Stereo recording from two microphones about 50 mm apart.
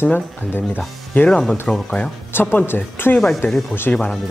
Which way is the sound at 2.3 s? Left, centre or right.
Left.